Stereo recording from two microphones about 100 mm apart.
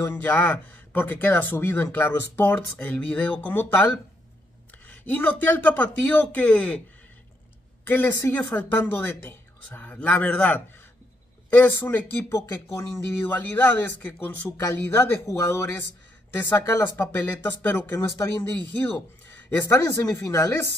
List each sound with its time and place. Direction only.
0.0 s a woman's voice: 20° left (ahead or behind)
7.8 s a woman's voice: 20° left (ahead or behind)